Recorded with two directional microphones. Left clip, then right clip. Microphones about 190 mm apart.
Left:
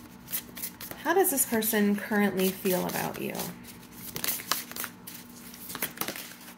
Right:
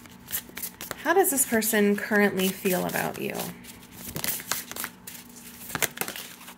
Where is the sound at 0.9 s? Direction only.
25° right (ahead or behind).